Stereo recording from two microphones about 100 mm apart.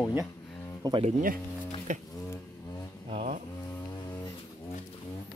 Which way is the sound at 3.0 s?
65° right (ahead or behind).